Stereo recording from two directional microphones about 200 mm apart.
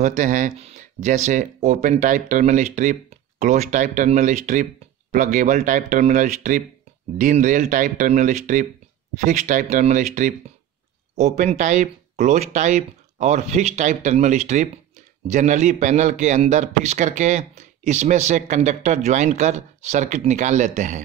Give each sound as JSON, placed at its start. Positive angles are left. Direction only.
{"t": 0.0, "sound": "a man's voice", "side_deg": -40}